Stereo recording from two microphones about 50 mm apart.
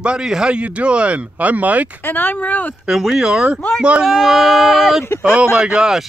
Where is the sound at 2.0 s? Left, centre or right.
Left.